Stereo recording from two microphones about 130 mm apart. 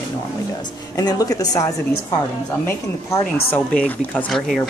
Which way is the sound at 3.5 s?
10° left (ahead or behind).